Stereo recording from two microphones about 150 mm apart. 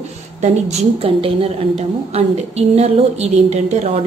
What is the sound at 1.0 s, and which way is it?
A woman's voice, 40° right (ahead or behind).